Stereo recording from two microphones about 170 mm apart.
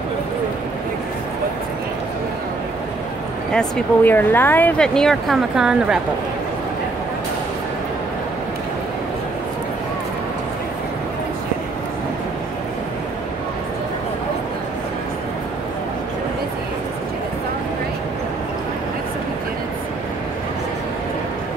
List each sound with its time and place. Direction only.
3.5 s speech: 10° left (ahead or behind)